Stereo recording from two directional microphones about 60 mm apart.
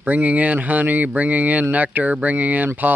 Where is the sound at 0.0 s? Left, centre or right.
Right.